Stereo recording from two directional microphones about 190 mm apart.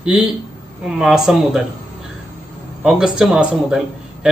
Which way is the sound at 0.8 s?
Centre (ahead or behind).